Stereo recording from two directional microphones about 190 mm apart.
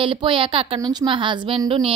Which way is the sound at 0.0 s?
25° right (ahead or behind).